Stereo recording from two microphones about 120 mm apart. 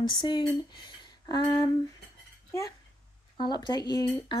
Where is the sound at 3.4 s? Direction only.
35° left (ahead or behind).